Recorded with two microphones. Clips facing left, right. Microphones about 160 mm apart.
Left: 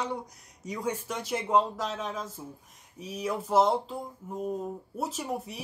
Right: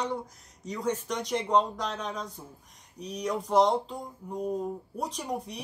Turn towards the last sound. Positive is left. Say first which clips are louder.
# even
turn(degrees=5)  # may be behind; listen again after turning